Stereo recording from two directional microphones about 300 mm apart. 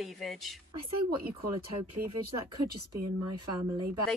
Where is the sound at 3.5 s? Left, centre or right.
Centre.